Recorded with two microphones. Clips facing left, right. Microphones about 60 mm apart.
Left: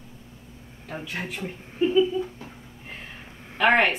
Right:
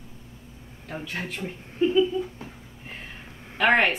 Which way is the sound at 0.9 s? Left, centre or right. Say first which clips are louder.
Even; centre.